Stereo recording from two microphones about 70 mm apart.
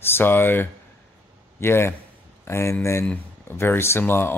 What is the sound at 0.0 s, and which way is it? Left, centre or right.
Speech, left.